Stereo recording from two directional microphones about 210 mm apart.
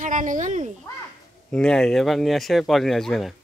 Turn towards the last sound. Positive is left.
turn(degrees=0)  # may be behind; listen again after turning